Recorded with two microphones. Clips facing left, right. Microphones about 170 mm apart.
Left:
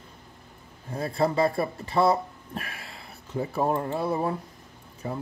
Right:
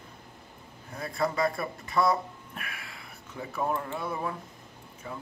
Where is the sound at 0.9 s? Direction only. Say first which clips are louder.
Left 5 dB; 30° left (ahead or behind).